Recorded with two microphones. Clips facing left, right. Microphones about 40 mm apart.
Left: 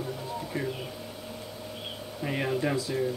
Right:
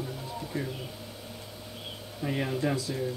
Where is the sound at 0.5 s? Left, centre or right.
Centre.